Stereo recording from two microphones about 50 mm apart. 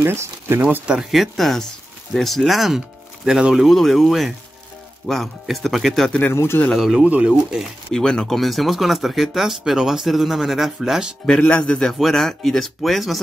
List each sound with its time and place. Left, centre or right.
0.0 s speech: right
1.1 s speech: centre
2.4 s speech: centre
3.6 s speech: centre
6.3 s speech: left
6.8 s speech: centre
7.1 s speech: right
7.9 s a man's voice: centre
8.4 s speech: centre
11.4 s a man's voice: left; by 13.2 s centre